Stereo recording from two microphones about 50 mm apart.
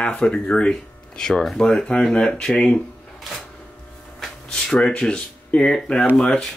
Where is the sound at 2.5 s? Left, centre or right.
Left.